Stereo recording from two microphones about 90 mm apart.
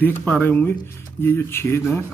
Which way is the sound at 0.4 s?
25° left (ahead or behind).